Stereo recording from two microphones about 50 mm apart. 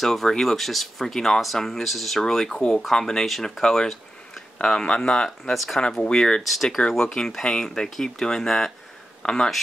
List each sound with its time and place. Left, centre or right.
0.0 s speech: centre
5.4 s speech: centre
6.0 s speech: centre
6.4 s speech: centre
6.9 s speech: centre